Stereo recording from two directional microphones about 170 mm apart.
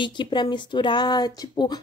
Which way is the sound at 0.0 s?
25° left (ahead or behind).